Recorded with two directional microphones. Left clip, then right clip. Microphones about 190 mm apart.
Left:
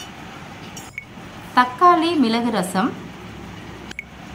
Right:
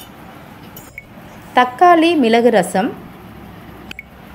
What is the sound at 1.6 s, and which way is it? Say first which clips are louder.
A woman's voice: right 4 dB; 10° right (ahead or behind).